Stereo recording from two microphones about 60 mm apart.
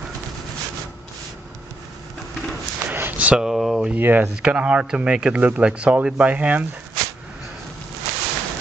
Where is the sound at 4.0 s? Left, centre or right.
Right.